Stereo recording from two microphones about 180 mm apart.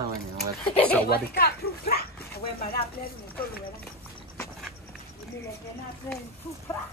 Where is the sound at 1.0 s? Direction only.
60° left (ahead or behind).